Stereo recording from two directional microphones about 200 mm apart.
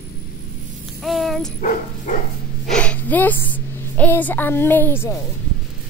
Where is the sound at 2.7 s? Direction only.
5° left (ahead or behind).